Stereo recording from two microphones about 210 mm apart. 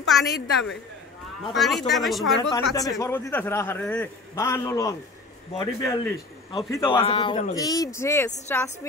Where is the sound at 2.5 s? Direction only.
15° left (ahead or behind).